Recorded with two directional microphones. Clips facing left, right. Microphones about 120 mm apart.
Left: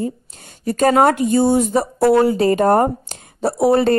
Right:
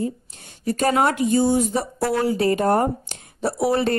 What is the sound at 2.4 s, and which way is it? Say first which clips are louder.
Speech: left 5 dB; 40° left (ahead or behind).